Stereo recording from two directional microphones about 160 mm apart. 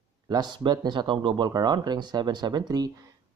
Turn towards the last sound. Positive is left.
turn(degrees=-25)  # may be behind; listen again after turning